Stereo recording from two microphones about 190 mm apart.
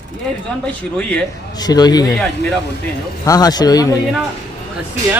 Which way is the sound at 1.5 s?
20° left (ahead or behind).